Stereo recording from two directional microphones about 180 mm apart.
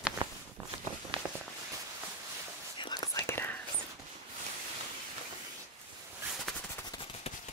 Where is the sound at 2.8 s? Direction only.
25° left (ahead or behind).